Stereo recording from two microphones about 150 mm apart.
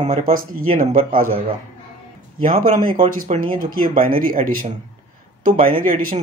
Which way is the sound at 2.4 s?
65° right (ahead or behind).